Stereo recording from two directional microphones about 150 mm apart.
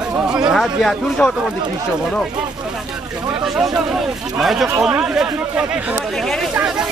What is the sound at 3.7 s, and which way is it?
Speech, centre (ahead or behind).